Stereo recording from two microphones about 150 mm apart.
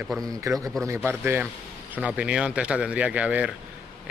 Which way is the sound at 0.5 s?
20° right (ahead or behind).